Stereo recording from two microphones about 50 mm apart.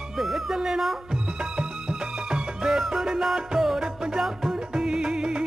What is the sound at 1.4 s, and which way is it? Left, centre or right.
Music, right.